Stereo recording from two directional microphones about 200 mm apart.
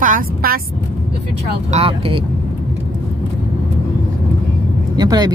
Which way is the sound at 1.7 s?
30° right (ahead or behind).